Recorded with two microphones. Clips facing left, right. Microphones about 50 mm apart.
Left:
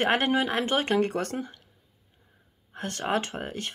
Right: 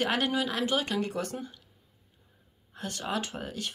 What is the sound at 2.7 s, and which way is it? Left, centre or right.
Speech, left.